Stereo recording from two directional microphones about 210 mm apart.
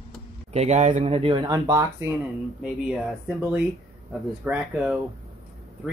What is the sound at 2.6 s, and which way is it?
Speech, 5° right (ahead or behind).